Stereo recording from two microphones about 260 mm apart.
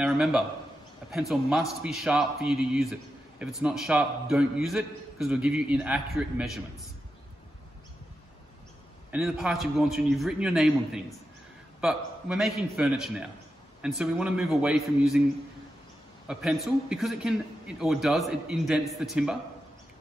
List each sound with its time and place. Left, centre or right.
0.0 s a man's voice: centre
9.1 s a man's voice: centre
16.3 s a man's voice: centre